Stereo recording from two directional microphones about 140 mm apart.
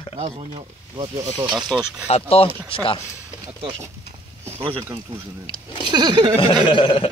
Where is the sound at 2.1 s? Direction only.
45° left (ahead or behind).